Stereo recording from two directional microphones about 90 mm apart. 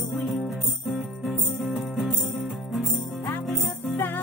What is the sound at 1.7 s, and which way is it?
Music, centre (ahead or behind).